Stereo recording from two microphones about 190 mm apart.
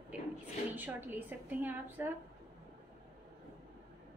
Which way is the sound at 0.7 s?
10° right (ahead or behind).